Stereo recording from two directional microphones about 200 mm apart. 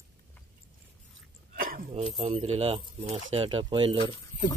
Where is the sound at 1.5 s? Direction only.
45° right (ahead or behind).